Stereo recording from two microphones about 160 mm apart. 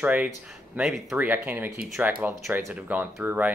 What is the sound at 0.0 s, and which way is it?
Speech, 10° right (ahead or behind).